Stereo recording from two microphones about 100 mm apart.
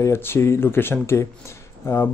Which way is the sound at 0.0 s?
25° left (ahead or behind).